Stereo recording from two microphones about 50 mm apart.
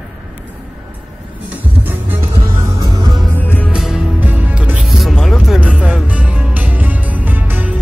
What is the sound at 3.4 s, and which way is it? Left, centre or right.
Music, left.